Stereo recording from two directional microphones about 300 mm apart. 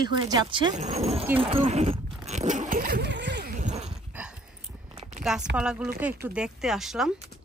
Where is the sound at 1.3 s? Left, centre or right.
Centre.